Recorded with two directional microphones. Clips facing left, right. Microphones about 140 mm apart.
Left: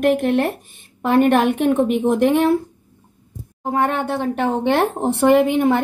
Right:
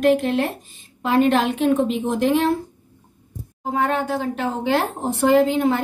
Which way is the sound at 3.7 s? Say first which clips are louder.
Left 1 dB; 60° left (ahead or behind).